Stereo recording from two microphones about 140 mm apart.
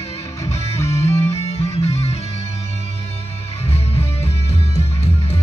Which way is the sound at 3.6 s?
45° left (ahead or behind).